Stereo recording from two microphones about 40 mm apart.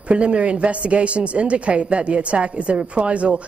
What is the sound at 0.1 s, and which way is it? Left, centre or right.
Speech, right.